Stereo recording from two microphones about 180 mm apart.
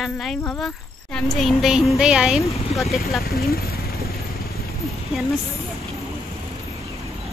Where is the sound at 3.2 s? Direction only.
60° left (ahead or behind).